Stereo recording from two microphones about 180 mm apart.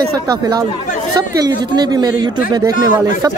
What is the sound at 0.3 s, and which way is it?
Speech, 25° right (ahead or behind).